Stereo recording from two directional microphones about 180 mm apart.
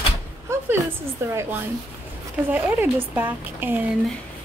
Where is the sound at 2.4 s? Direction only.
10° right (ahead or behind).